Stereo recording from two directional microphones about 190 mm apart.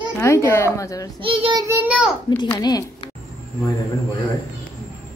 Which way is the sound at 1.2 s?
30° right (ahead or behind).